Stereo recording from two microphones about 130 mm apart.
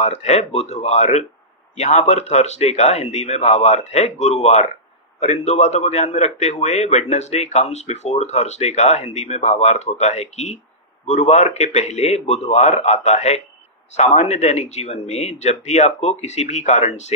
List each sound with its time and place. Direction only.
0.0 s a man's voice: 60° left (ahead or behind)